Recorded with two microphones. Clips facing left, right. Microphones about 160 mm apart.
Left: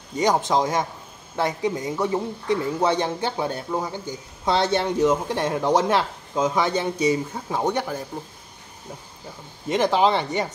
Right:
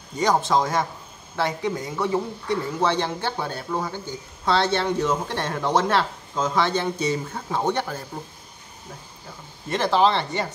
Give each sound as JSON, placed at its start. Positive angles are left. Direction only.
{"t": 0.2, "sound": "speech", "side_deg": 15}
{"t": 9.7, "sound": "speech", "side_deg": 15}